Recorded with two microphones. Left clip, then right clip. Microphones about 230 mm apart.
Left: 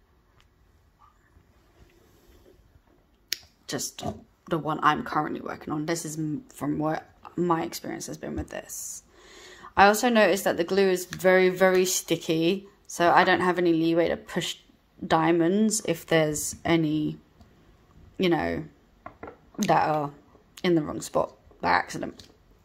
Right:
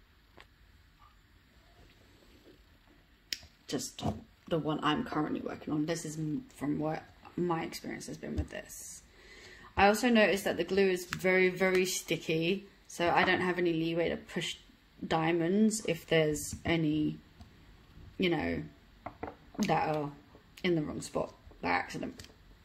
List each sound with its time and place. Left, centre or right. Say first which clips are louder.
3.3 s finger snapping: left 5 dB; centre
4.5 s speech: left 8 dB; centre
18.2 s speech: left 7 dB; centre
19.6 s speech: left 8 dB; centre